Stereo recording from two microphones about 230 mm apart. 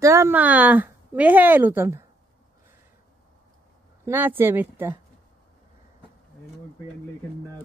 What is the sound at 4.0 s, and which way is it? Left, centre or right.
Speech, centre.